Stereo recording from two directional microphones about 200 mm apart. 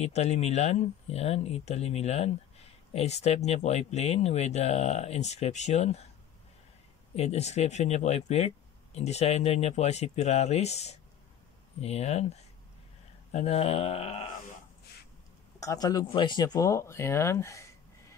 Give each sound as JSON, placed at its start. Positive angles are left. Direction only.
{"t": 0.0, "sound": "speech", "side_deg": 35}
{"t": 7.2, "sound": "speech", "side_deg": 30}
{"t": 15.6, "sound": "speech", "side_deg": 15}